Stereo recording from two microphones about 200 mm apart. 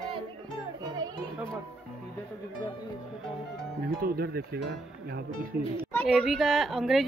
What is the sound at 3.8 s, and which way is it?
Speech, 50° right (ahead or behind).